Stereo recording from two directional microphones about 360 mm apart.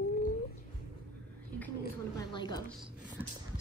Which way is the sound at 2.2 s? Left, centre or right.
Centre.